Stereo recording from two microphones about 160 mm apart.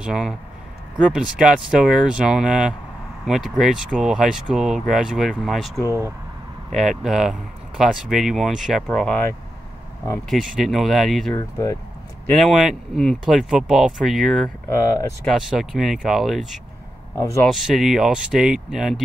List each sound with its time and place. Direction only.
0.0 s speech: 5° right (ahead or behind)
5.9 s speech: 20° right (ahead or behind)
6.7 s speech: centre (ahead or behind)
10.6 s speech: centre (ahead or behind)
11.3 s speech: 20° left (ahead or behind)
12.3 s speech: centre (ahead or behind)
14.7 s speech: 20° left (ahead or behind)
15.2 s speech: centre (ahead or behind)
17.2 s speech: 15° left (ahead or behind)
17.5 s speech: centre (ahead or behind)